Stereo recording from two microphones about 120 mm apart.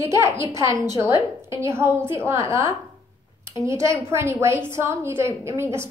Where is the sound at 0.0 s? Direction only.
25° right (ahead or behind).